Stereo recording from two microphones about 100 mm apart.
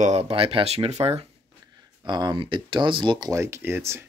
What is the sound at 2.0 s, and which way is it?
Speech, 45° right (ahead or behind).